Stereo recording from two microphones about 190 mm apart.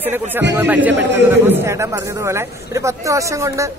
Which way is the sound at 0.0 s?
10° right (ahead or behind).